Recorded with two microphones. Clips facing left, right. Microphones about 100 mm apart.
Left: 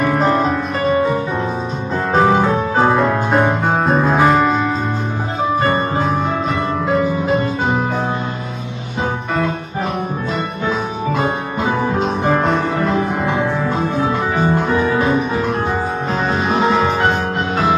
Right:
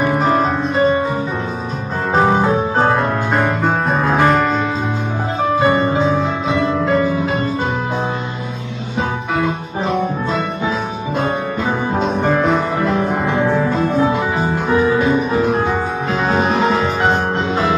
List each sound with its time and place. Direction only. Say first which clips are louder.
0.0 s music: even; 5° right (ahead or behind)
0.7 s music: right 1 dB; 25° right (ahead or behind)
2.1 s music: even; centre (ahead or behind)
5.6 s music: right 3 dB; 10° right (ahead or behind)
5.9 s music: right 1 dB; centre (ahead or behind)
11.9 s music: even; centre (ahead or behind)
14.3 s music: left 1 dB; 15° right (ahead or behind)
15.1 s music: right 2 dB; centre (ahead or behind)